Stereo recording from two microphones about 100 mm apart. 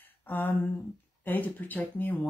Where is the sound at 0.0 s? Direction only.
20° left (ahead or behind).